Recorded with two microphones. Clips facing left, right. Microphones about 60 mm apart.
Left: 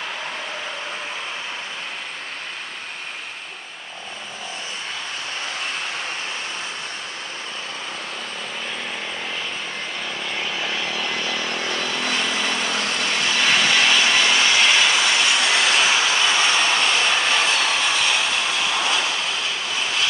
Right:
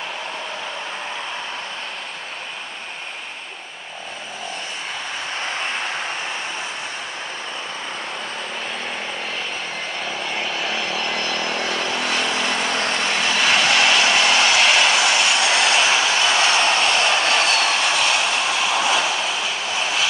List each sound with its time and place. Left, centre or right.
10.0 s vehicle: centre
12.6 s vehicle: right
13.1 s vehicle: centre